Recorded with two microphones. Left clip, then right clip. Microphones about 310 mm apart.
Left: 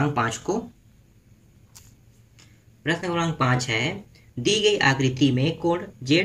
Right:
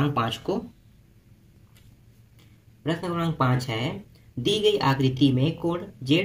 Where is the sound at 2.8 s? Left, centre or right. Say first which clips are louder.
Left 3 dB; centre.